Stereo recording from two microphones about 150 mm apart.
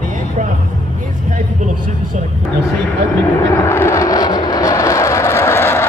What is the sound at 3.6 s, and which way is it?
Vehicle, 15° left (ahead or behind).